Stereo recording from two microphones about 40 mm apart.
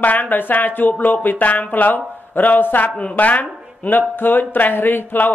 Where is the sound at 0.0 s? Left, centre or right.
Left.